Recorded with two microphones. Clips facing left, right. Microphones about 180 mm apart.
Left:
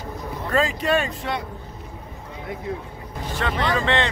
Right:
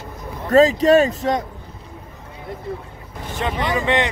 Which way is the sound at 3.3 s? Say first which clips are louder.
Right 1 dB; 20° right (ahead or behind).